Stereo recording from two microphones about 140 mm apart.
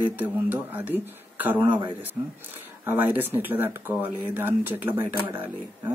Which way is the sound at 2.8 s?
15° right (ahead or behind).